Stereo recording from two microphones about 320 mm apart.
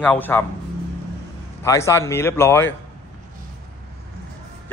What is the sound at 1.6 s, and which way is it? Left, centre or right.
Speech, centre.